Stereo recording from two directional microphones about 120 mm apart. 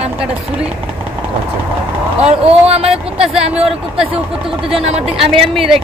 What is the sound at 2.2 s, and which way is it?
Speech, 60° right (ahead or behind).